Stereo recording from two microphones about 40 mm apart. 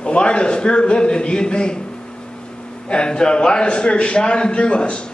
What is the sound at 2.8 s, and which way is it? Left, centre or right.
A man's voice, left.